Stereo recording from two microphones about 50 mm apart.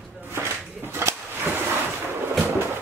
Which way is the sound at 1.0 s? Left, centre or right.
Right.